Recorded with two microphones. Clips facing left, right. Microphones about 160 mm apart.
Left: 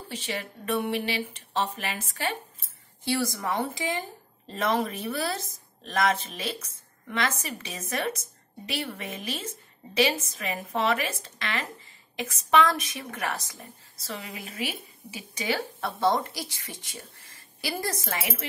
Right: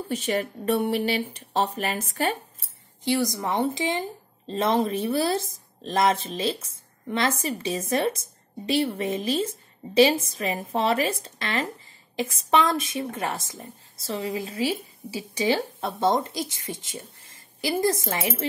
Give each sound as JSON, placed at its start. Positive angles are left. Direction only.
{"t": 0.1, "sound": "speech", "side_deg": -45}
{"t": 3.0, "sound": "a woman's voice", "side_deg": -20}